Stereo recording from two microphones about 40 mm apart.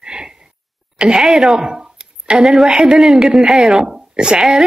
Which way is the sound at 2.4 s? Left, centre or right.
Centre.